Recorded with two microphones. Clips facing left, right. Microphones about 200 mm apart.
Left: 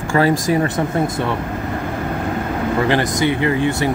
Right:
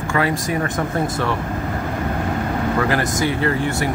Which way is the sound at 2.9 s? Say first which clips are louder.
Left 3 dB; 20° left (ahead or behind).